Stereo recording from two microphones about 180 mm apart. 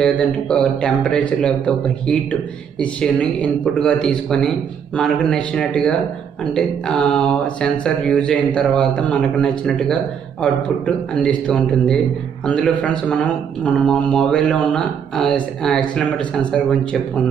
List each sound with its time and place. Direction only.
0.0 s speech: 5° left (ahead or behind)
11.2 s speech: 5° left (ahead or behind)